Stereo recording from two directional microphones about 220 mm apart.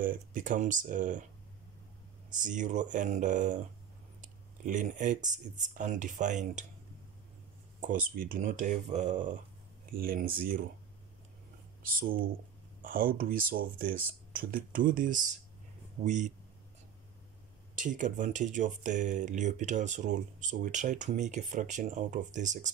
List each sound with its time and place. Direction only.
0.0 s speech: 40° right (ahead or behind)
2.4 s speech: 35° right (ahead or behind)
7.8 s speech: 40° right (ahead or behind)
11.8 s speech: 40° right (ahead or behind)
17.7 s speech: 35° right (ahead or behind)